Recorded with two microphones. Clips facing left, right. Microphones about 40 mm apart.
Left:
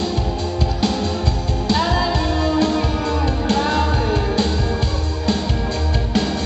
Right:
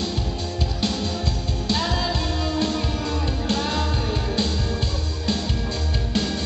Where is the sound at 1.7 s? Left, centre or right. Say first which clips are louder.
Left 6 dB; centre.